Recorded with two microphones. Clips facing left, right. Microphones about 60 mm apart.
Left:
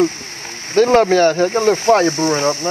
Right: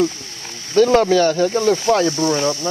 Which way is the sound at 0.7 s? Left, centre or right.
Left.